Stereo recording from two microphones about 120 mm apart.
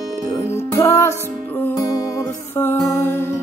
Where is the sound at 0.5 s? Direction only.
20° left (ahead or behind).